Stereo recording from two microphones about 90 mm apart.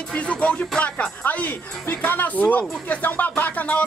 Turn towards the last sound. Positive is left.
turn(degrees=15)  # may be behind; listen again after turning